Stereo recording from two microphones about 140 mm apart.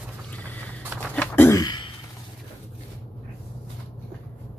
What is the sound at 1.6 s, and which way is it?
Throat clearing, 35° left (ahead or behind).